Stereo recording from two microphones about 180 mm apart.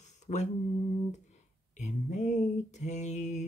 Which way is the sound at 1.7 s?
40° left (ahead or behind).